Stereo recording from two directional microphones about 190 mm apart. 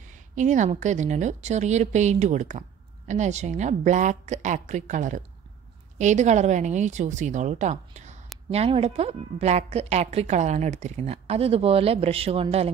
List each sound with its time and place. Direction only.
0.1 s a woman's voice: 40° right (ahead or behind)